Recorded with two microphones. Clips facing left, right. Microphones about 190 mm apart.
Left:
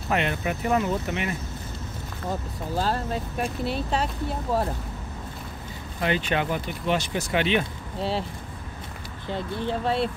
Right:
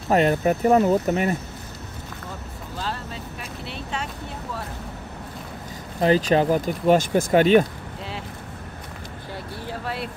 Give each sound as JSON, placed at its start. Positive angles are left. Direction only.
{"t": 0.1, "sound": "speech", "side_deg": -40}
{"t": 2.8, "sound": "speech", "side_deg": 45}
{"t": 5.9, "sound": "speech", "side_deg": -35}
{"t": 9.3, "sound": "speech", "side_deg": 25}